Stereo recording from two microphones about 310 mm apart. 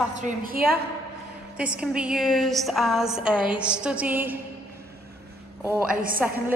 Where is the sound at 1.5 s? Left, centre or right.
Centre.